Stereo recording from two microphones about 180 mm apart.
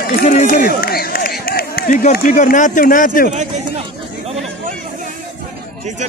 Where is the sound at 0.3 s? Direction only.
45° left (ahead or behind).